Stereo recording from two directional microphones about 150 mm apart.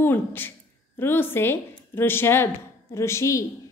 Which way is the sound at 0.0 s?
15° left (ahead or behind).